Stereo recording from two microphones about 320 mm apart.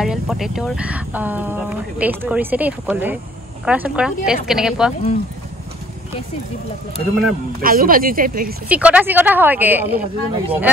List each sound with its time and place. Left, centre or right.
0.0 s speech: centre
7.6 s speech: right
8.6 s speech: centre